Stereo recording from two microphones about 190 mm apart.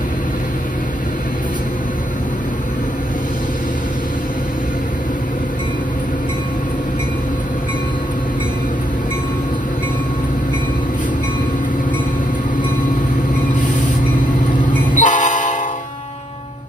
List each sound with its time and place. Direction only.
15.0 s train: 40° left (ahead or behind)